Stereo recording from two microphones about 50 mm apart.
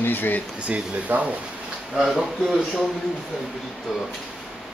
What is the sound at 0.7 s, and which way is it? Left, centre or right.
Speech, right.